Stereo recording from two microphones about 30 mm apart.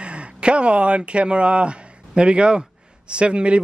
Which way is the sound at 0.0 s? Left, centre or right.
Right.